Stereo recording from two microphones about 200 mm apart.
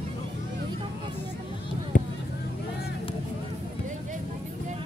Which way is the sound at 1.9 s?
40° left (ahead or behind).